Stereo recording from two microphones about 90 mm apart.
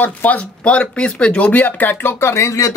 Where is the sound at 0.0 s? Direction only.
20° left (ahead or behind).